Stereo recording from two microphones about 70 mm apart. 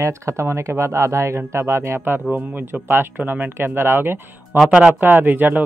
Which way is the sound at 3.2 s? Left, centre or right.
Right.